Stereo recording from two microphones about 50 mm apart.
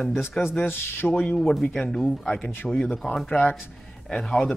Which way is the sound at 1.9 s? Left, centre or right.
Centre.